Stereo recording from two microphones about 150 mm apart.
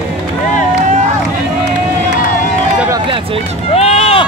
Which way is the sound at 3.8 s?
45° left (ahead or behind).